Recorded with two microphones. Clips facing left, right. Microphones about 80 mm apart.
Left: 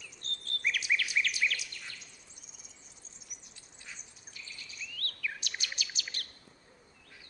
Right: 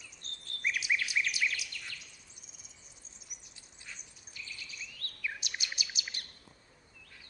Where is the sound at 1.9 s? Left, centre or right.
Left.